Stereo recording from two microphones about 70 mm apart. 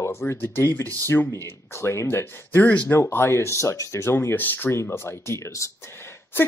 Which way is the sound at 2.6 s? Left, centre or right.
Centre.